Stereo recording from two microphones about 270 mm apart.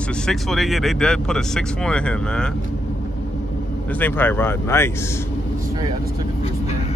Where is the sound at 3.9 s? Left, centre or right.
Centre.